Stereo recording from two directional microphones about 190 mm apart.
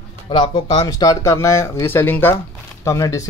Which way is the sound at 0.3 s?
25° left (ahead or behind).